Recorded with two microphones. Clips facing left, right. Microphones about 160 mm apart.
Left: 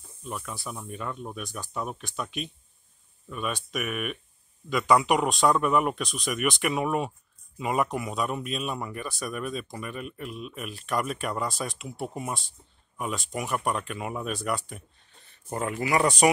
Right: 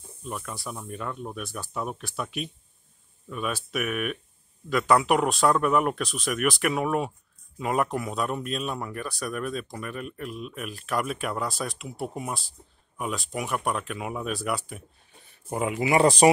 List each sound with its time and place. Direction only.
0.2 s speech: centre (ahead or behind)
3.3 s speech: centre (ahead or behind)
15.5 s speech: 15° right (ahead or behind); by 16.3 s 30° right (ahead or behind)